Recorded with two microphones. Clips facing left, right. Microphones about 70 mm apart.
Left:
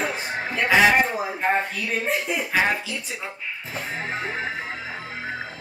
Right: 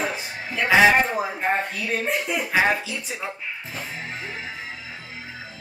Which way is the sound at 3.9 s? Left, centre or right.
Left.